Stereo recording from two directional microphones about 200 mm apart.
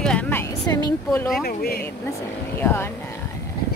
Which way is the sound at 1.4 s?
50° left (ahead or behind).